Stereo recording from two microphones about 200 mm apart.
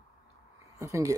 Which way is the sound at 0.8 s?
15° right (ahead or behind).